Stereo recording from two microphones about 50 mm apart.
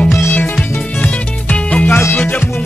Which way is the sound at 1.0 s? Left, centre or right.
Left.